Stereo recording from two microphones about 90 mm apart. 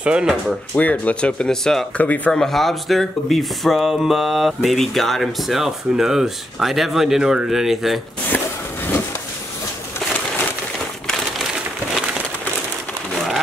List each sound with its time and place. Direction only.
0.0 s speech: 10° right (ahead or behind)
0.7 s speech: 15° left (ahead or behind)
2.0 s speech: 15° left (ahead or behind); by 8.0 s centre (ahead or behind)
8.3 s a sound: 20° left (ahead or behind)